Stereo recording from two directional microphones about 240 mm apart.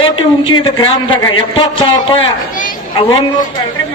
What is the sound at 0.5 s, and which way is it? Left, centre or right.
A man's voice, centre.